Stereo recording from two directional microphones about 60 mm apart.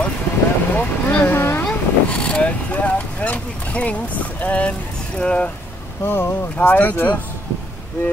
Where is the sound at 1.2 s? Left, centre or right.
Left.